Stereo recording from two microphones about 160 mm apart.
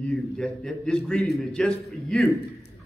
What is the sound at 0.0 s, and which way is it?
A man's voice, 5° left (ahead or behind).